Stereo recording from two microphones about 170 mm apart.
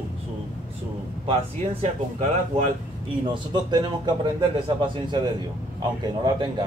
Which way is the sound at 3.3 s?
25° right (ahead or behind).